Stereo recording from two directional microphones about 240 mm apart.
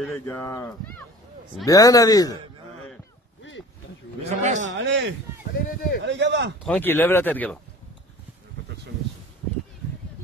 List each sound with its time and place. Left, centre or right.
0.3 s speech: centre
4.2 s a man's voice: right
4.6 s speech: right
5.5 s speech: left
6.0 s speech: right
6.6 s speech: centre